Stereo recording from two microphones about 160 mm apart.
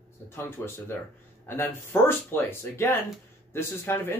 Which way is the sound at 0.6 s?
15° left (ahead or behind).